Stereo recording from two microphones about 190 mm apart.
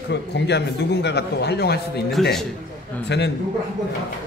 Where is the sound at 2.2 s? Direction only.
Centre (ahead or behind).